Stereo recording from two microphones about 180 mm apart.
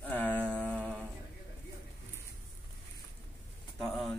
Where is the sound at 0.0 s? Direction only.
10° left (ahead or behind).